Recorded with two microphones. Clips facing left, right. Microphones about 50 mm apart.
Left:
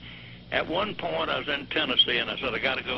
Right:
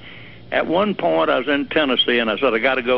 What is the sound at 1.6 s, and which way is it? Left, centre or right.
Speech, right.